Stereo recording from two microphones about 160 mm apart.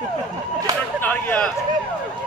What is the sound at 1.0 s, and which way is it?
Speech, 10° left (ahead or behind).